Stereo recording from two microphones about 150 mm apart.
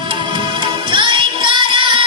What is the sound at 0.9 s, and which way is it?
Music, 35° right (ahead or behind).